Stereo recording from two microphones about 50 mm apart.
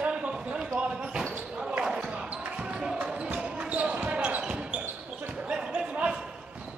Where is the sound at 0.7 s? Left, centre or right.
Centre.